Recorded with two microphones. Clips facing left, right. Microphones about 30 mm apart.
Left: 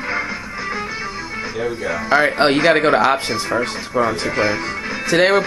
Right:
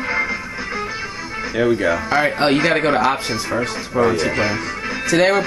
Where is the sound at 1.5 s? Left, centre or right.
Right.